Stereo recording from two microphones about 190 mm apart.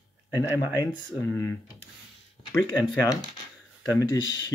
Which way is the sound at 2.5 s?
15° left (ahead or behind).